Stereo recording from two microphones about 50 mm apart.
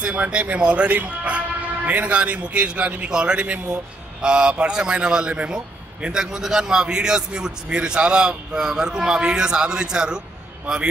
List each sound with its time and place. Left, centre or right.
0.0 s a man's voice: right